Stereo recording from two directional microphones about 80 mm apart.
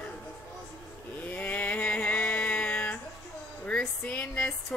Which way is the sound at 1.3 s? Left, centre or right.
Left.